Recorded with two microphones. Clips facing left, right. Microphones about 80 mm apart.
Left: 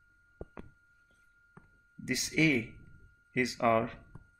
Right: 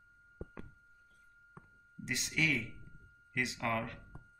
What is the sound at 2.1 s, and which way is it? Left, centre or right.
Speech, centre.